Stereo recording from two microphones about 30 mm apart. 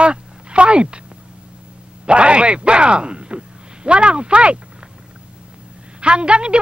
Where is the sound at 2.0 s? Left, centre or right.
Right.